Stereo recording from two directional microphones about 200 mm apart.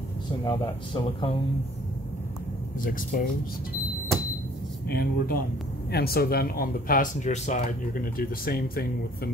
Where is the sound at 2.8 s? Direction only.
45° left (ahead or behind).